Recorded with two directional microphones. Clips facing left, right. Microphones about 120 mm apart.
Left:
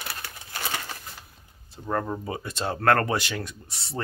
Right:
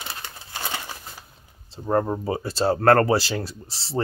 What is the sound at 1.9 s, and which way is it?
Speech, 30° right (ahead or behind).